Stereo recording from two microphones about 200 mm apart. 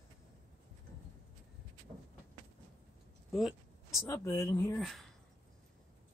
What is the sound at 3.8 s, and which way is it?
Speech, 15° left (ahead or behind).